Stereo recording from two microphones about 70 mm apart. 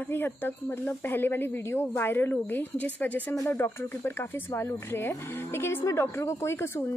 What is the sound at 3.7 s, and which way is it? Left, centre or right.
A woman's voice, left.